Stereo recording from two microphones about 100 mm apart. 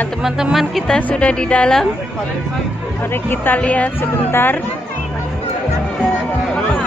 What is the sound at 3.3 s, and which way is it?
A woman's voice, 15° left (ahead or behind).